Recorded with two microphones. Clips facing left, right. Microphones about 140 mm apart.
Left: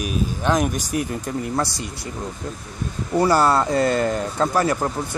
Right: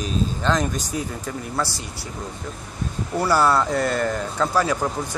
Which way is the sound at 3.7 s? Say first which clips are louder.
Left 3 dB; 70° left (ahead or behind).